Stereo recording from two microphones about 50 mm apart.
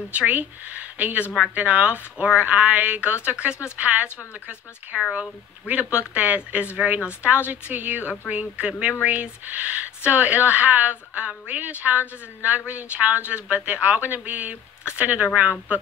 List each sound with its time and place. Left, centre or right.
0.1 s speech: right